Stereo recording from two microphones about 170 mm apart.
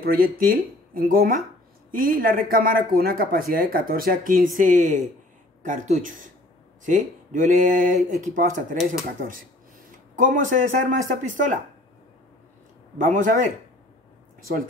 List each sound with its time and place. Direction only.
0.0 s speech: 60° right (ahead or behind)
12.9 s speech: 50° right (ahead or behind)